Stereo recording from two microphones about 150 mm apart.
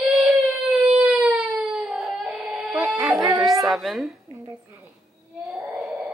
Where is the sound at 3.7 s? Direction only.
Centre (ahead or behind).